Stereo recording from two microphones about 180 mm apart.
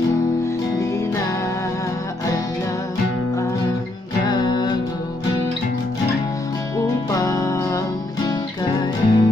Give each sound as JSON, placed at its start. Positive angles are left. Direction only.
{"t": 4.3, "sound": "music", "side_deg": 25}
{"t": 7.1, "sound": "music", "side_deg": 20}